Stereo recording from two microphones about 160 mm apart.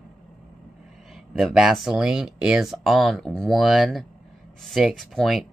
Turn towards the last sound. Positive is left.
turn(degrees=0)  # may be behind; listen again after turning